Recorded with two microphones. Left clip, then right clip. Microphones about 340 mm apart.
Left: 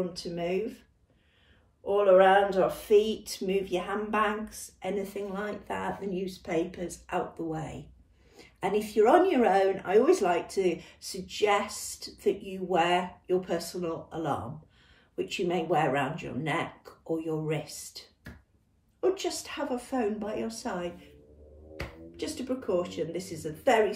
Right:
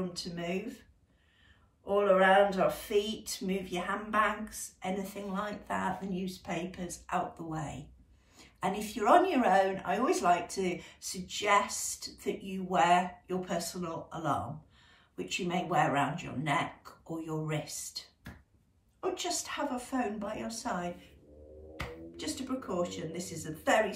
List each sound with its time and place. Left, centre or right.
1.9 s speech: centre
18.9 s speech: centre
22.1 s speech: centre